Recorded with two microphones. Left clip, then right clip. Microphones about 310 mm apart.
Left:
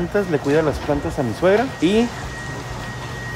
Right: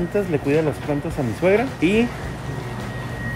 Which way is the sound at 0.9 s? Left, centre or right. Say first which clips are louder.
Left 3 dB; centre.